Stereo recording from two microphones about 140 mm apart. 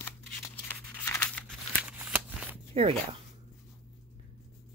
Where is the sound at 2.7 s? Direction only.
45° right (ahead or behind).